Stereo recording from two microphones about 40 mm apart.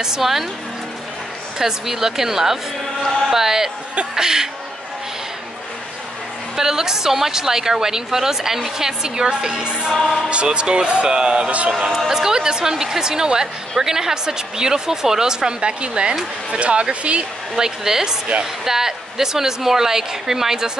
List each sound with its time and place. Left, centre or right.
0.0 s speech: centre
1.6 s a woman's voice: centre
3.3 s a sound: centre
4.1 s a woman's voice: centre
6.5 s a woman's voice: centre; by 11.7 s right
12.0 s a woman's voice: centre
15.6 s speech: right
17.6 s a woman's voice: centre